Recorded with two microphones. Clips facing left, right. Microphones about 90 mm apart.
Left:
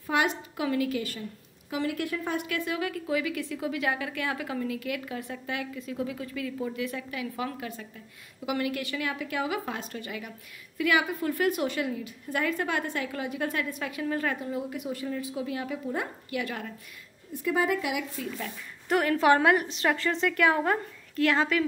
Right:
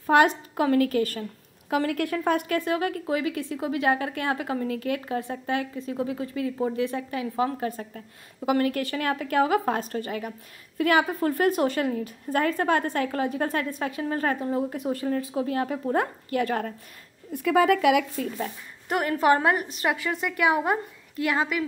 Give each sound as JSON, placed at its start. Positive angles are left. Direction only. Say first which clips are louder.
{"t": 0.0, "sound": "a woman's voice", "louder": "right 8 dB", "side_deg": -45}
{"t": 17.3, "sound": "speech", "louder": "right 6 dB", "side_deg": -70}
{"t": 18.9, "sound": "a woman's voice", "louder": "right 1 dB", "side_deg": -25}
{"t": 19.8, "sound": "a woman's voice", "louder": "even", "side_deg": -10}